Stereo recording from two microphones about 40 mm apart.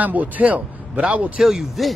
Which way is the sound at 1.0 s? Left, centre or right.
Right.